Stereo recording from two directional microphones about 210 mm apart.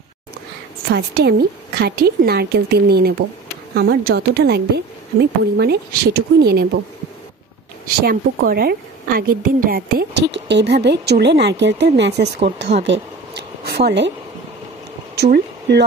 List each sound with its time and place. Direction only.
0.8 s a woman's voice: 50° right (ahead or behind)
7.8 s a woman's voice: 45° right (ahead or behind)
12.5 s a sound: 55° right (ahead or behind)
15.1 s speech: 50° right (ahead or behind)